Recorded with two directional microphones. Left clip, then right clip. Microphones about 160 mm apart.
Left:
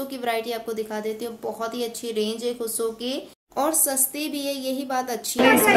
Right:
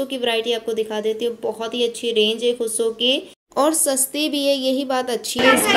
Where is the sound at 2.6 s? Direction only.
10° right (ahead or behind).